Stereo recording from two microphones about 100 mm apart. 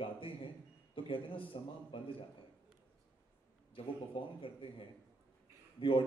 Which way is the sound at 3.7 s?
60° left (ahead or behind).